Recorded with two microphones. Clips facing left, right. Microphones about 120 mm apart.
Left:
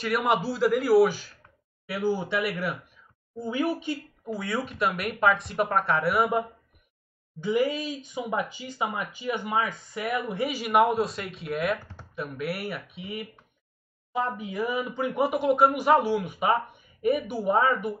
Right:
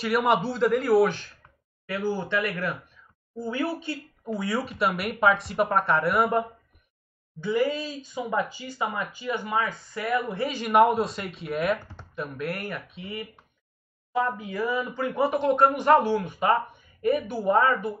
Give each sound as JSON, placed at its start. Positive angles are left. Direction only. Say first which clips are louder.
{"t": 0.0, "sound": "speech", "louder": "right 2 dB", "side_deg": 0}
{"t": 4.3, "sound": "speech", "louder": "right 2 dB", "side_deg": 0}
{"t": 7.3, "sound": "speech", "louder": "even", "side_deg": 15}